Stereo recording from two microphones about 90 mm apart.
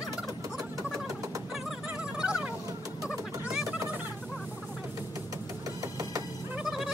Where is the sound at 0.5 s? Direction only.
40° right (ahead or behind).